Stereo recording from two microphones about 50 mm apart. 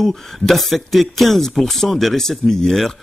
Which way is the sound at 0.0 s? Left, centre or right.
Centre.